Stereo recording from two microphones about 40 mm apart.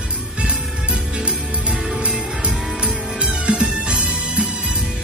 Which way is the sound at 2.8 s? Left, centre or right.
Right.